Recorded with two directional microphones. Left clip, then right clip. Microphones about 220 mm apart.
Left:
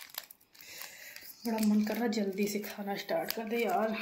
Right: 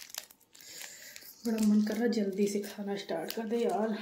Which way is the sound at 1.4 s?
10° right (ahead or behind).